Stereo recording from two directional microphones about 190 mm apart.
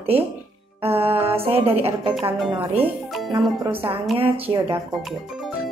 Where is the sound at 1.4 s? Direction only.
30° right (ahead or behind).